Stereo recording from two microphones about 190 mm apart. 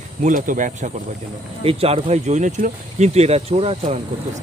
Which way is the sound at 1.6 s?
30° right (ahead or behind).